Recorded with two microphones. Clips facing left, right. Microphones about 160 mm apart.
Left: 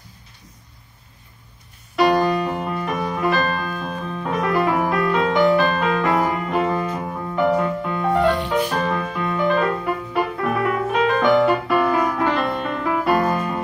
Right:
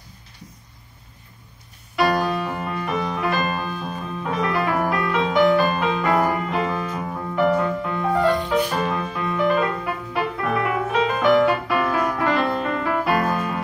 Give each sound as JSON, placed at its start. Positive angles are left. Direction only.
{"t": 2.0, "sound": "keyboard", "side_deg": 0}
{"t": 3.5, "sound": "music", "side_deg": -5}
{"t": 8.2, "sound": "music", "side_deg": 70}
{"t": 9.2, "sound": "music", "side_deg": 0}